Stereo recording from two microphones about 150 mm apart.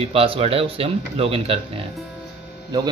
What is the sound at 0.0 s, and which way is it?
A man's voice, 40° right (ahead or behind).